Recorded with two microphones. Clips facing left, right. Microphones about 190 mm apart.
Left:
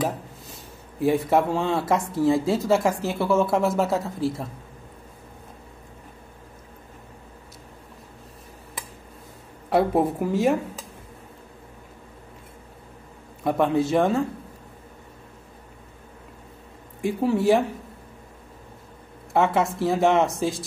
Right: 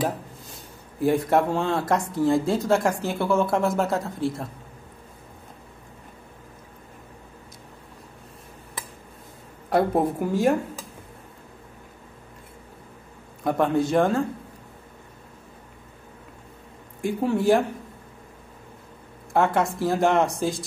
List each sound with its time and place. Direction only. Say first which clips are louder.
0.0 s speech: even; centre (ahead or behind)
9.7 s speech: left 1 dB; centre (ahead or behind)
13.4 s speech: left 1 dB; centre (ahead or behind)
17.0 s speech: left 1 dB; centre (ahead or behind)
19.3 s speech: even; centre (ahead or behind)